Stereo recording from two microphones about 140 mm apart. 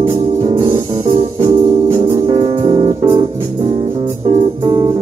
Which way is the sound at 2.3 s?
45° right (ahead or behind).